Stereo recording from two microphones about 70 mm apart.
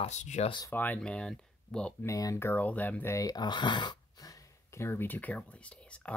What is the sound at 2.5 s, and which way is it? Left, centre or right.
Speech, left.